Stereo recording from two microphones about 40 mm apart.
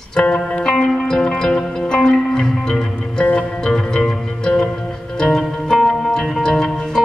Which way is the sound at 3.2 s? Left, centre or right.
Left.